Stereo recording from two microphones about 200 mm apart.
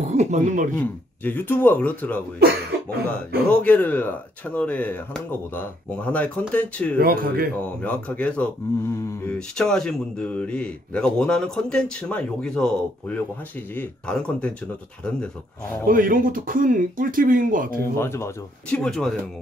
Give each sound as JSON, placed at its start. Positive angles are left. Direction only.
{"t": 0.0, "sound": "speech", "side_deg": -35}
{"t": 0.7, "sound": "speech", "side_deg": 10}
{"t": 3.4, "sound": "speech", "side_deg": 10}
{"t": 7.0, "sound": "speech", "side_deg": -45}
{"t": 7.8, "sound": "speech", "side_deg": 5}
{"t": 15.9, "sound": "speech", "side_deg": -45}
{"t": 17.7, "sound": "speech", "side_deg": 15}